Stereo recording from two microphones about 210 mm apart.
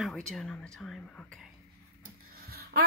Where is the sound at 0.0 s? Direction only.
Centre (ahead or behind).